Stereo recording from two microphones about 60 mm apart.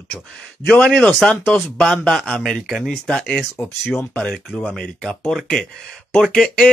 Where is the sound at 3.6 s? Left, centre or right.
Centre.